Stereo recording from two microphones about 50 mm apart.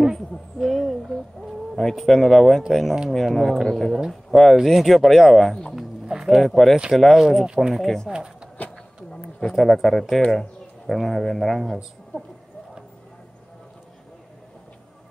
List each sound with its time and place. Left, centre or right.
0.6 s owl: centre
1.8 s speech: centre
5.8 s music: centre
6.4 s speech: centre
7.2 s speech: centre
7.7 s speech: centre
8.1 s speech: centre
9.4 s speech: centre